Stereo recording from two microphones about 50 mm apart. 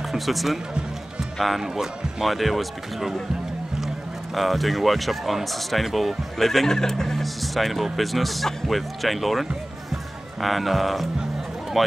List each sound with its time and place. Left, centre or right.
0.1 s speech: centre
1.6 s speech: centre
4.4 s speech: centre